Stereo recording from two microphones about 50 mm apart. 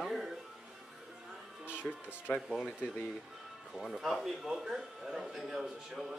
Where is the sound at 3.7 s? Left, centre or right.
Centre.